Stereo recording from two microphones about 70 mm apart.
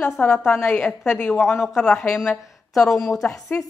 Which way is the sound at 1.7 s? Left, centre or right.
Centre.